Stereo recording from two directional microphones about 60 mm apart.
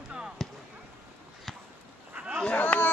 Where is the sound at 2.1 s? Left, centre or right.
Right.